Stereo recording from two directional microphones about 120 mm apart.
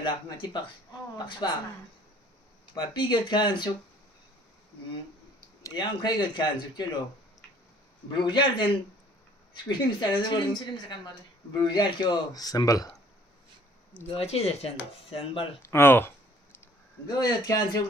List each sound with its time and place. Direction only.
0.0 s a woman's voice: 45° left (ahead or behind)
2.7 s a woman's voice: 40° left (ahead or behind)
5.6 s a woman's voice: 35° left (ahead or behind)
8.1 s a woman's voice: 40° left (ahead or behind)
14.0 s speech: 55° left (ahead or behind)
15.6 s speech: 20° left (ahead or behind)
17.1 s a woman's voice: 35° left (ahead or behind)